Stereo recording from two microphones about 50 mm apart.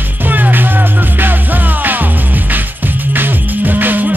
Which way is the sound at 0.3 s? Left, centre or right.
Right.